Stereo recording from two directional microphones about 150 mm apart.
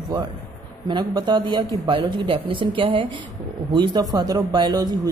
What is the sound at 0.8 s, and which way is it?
A man's voice, 30° right (ahead or behind).